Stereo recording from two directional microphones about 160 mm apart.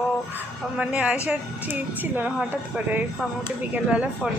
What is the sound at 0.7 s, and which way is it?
Speech, 5° right (ahead or behind).